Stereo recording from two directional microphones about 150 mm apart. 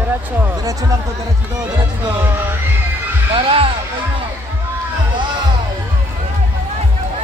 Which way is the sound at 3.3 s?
35° right (ahead or behind).